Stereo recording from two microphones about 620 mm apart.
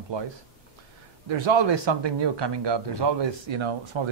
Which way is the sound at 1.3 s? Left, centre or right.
Right.